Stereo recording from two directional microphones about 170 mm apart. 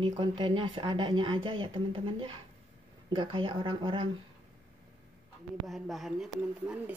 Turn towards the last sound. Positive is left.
turn(degrees=0)  # may be behind; listen again after turning